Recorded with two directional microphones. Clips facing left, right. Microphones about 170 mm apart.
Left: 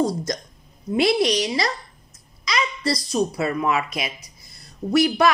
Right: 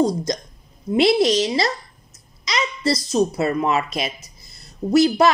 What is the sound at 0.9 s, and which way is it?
A woman's voice, 25° right (ahead or behind).